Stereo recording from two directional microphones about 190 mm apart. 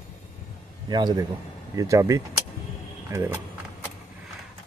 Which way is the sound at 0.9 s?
20° right (ahead or behind).